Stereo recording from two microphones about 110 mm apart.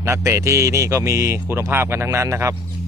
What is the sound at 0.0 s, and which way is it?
A man's voice, 25° right (ahead or behind).